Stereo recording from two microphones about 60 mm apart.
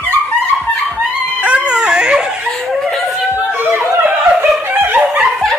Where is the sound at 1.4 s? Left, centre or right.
Centre.